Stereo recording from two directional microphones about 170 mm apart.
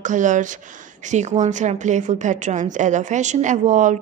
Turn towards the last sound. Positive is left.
turn(degrees=-45)  # may be behind; listen again after turning